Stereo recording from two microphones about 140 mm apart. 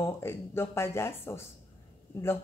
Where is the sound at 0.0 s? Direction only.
20° left (ahead or behind).